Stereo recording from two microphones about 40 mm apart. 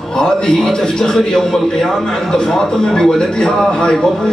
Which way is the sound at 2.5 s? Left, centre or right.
Centre.